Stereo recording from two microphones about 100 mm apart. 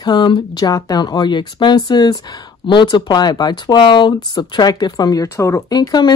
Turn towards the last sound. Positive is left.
turn(degrees=45)  # may be behind; listen again after turning